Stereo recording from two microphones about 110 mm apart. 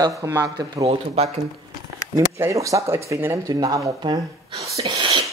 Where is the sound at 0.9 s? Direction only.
70° right (ahead or behind).